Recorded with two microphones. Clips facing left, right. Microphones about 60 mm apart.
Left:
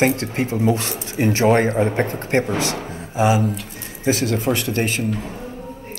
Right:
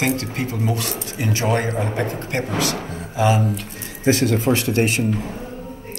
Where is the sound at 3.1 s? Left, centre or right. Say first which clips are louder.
Left 1 dB; centre.